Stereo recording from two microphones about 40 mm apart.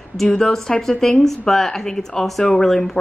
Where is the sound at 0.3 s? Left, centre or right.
Centre.